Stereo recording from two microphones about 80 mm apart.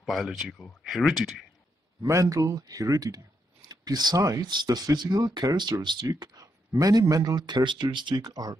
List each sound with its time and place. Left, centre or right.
0.0 s speech: centre
2.0 s speech: right
4.5 s speech: right
6.1 s speech: right
8.2 s speech: right